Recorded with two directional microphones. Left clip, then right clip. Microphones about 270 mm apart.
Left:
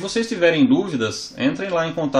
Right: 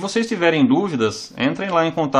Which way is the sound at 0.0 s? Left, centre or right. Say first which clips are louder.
Even; right.